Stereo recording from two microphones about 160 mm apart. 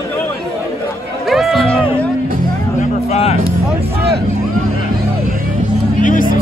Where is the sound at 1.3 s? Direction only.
Centre (ahead or behind).